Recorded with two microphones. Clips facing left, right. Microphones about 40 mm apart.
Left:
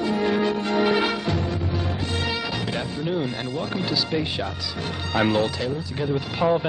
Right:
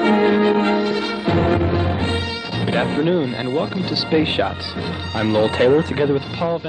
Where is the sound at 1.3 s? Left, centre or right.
Right.